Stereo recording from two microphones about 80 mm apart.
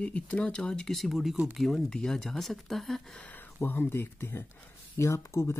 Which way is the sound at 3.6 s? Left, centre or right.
Left.